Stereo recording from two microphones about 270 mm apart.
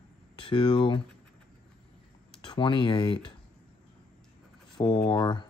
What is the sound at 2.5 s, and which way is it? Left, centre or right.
Speech, centre.